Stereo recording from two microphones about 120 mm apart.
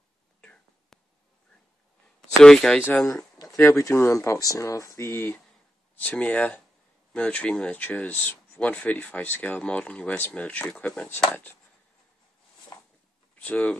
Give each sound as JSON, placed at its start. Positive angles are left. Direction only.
{"t": 0.4, "sound": "whispering", "side_deg": 5}
{"t": 2.4, "sound": "speech", "side_deg": 5}
{"t": 2.8, "sound": "speech", "side_deg": 20}
{"t": 13.3, "sound": "speech", "side_deg": 10}